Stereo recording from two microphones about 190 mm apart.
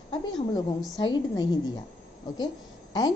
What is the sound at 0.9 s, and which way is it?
A woman's voice, 20° left (ahead or behind).